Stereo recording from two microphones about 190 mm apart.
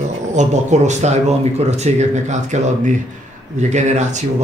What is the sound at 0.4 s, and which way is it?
Speech, 40° right (ahead or behind).